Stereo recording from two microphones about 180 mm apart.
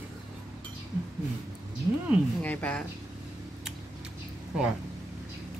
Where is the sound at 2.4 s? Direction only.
10° left (ahead or behind).